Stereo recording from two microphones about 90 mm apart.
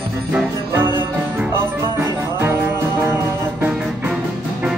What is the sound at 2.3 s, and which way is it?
Music, 30° right (ahead or behind).